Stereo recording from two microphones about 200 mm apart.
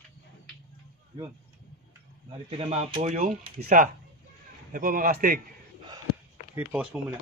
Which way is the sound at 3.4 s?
45° right (ahead or behind).